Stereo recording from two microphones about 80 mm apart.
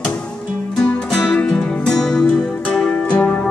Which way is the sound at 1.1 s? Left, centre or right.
Centre.